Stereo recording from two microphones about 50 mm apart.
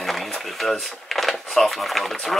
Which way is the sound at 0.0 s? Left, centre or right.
Centre.